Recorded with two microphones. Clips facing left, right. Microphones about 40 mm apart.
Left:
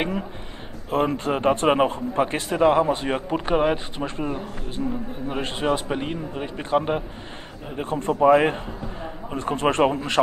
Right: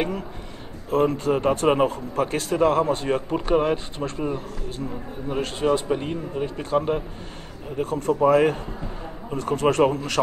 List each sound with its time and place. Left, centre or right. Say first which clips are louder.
0.8 s a man's voice: right 2 dB; left